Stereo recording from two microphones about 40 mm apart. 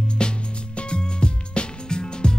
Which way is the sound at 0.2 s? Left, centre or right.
Left.